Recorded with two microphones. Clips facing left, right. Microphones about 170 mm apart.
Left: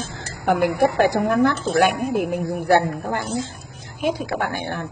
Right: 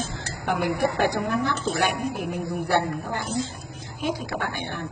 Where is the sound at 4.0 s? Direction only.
55° left (ahead or behind).